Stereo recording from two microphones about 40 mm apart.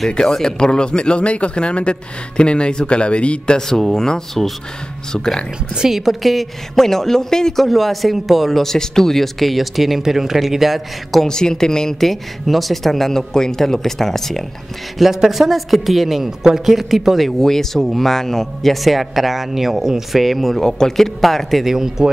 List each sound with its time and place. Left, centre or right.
0.3 s speech: centre
3.5 s speech: centre
5.8 s speech: centre
7.6 s speech: centre
11.2 s speech: centre
15.2 s speech: centre
17.4 s speech: centre
21.6 s speech: centre